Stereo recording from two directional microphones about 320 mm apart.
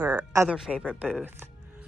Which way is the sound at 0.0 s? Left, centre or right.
Centre.